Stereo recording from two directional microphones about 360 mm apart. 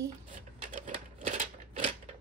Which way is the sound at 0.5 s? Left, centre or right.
Centre.